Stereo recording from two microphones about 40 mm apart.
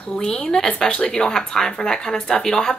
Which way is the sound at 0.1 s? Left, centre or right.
Centre.